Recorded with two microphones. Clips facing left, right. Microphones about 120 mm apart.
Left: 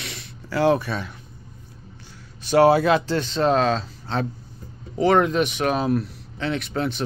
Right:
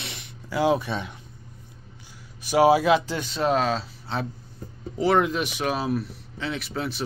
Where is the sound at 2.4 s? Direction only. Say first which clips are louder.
Left 2 dB; 10° right (ahead or behind).